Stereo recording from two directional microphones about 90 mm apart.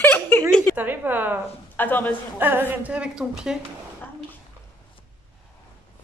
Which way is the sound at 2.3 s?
20° right (ahead or behind).